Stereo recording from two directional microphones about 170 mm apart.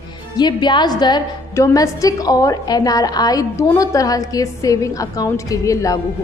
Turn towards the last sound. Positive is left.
turn(degrees=20)  # may be behind; listen again after turning